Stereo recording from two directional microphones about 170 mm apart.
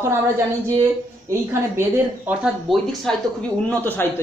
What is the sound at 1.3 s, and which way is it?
Speech, 15° right (ahead or behind).